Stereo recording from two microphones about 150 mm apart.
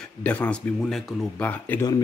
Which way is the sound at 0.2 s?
10° left (ahead or behind).